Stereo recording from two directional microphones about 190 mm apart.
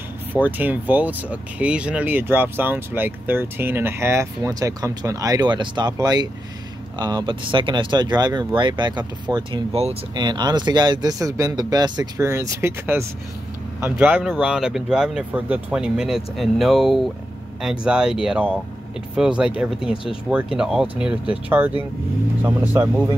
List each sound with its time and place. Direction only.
0.3 s speech: 10° right (ahead or behind)